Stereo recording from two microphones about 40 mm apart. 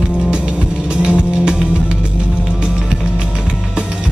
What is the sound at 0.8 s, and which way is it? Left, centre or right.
Music, right.